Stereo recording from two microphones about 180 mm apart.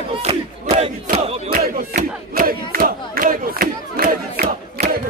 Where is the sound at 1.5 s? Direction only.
50° right (ahead or behind).